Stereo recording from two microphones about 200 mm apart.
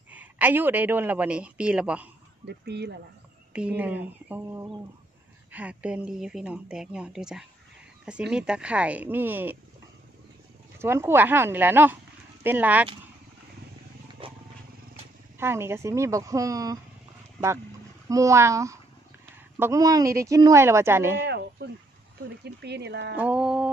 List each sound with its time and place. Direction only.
0.1 s speech: 10° right (ahead or behind)
2.4 s speech: 55° right (ahead or behind)
3.5 s a woman's voice: 5° right (ahead or behind)
10.8 s speech: 10° right (ahead or behind)
14.2 s wild animals: 25° right (ahead or behind)
15.3 s speech: 10° right (ahead or behind)
18.0 s speech: 15° right (ahead or behind)
22.4 s speech: 55° right (ahead or behind)
23.1 s a woman's voice: 5° right (ahead or behind)